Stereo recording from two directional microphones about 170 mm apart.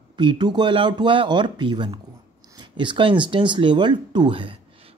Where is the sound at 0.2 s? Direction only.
25° right (ahead or behind).